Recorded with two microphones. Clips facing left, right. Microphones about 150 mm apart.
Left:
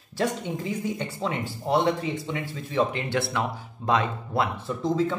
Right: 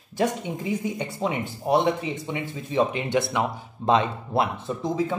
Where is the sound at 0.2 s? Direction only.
15° right (ahead or behind).